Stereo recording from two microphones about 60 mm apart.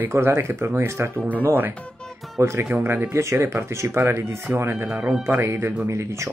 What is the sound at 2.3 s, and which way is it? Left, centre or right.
Speech, right.